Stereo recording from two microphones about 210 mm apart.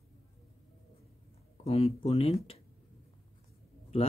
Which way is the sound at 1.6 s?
30° left (ahead or behind).